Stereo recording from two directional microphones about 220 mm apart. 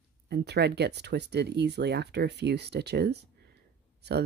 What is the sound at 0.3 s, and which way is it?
Speech, 50° right (ahead or behind).